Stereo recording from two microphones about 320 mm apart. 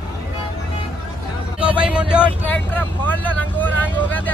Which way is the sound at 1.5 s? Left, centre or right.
Centre.